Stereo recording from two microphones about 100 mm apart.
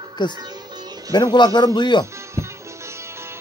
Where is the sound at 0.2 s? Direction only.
45° left (ahead or behind).